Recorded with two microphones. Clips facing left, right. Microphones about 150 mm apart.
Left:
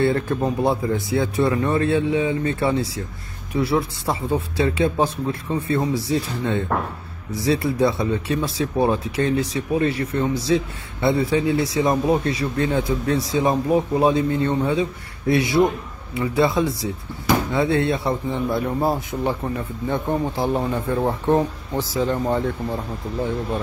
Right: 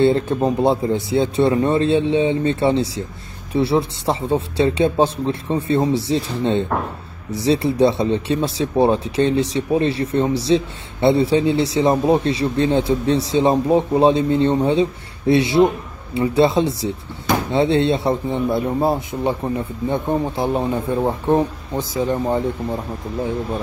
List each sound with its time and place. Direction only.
0.0 s speech: 25° right (ahead or behind)